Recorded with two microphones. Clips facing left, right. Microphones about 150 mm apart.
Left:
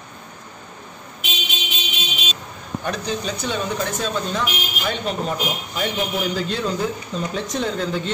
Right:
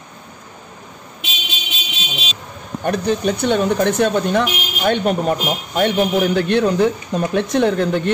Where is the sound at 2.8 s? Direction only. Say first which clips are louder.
Right 8 dB; 55° right (ahead or behind).